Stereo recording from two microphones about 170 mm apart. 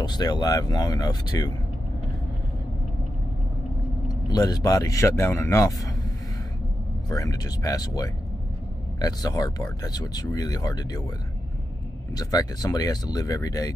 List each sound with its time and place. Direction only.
0.0 s speech: 25° left (ahead or behind)
4.1 s speech: 20° left (ahead or behind)
7.1 s speech: 20° left (ahead or behind)
12.1 s speech: 20° left (ahead or behind)